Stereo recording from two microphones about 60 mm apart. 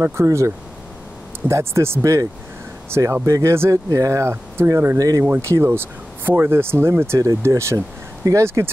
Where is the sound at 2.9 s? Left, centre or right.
Right.